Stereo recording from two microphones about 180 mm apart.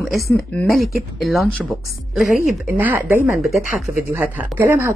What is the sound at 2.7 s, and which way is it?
Speech, 10° right (ahead or behind).